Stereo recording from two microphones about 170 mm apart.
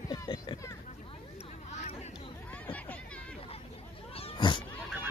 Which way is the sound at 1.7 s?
40° left (ahead or behind).